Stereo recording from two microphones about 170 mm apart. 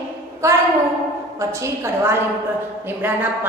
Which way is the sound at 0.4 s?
20° right (ahead or behind).